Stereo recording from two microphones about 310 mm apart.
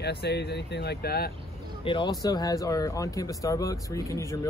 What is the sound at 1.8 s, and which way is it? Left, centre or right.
Speech, centre.